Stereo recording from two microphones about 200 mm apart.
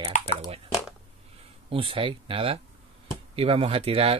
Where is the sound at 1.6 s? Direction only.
25° right (ahead or behind).